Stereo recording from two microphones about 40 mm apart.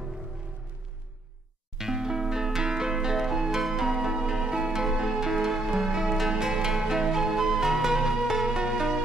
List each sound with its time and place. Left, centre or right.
1.8 s music: centre